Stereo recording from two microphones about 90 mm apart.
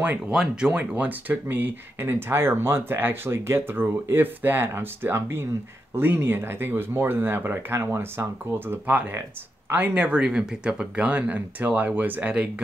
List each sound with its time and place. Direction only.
0.3 s speech: 5° right (ahead or behind)